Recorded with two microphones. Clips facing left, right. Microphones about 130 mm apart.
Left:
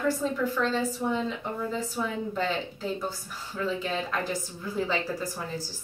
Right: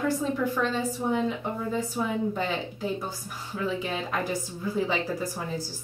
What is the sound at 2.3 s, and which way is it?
A woman's voice, 10° right (ahead or behind).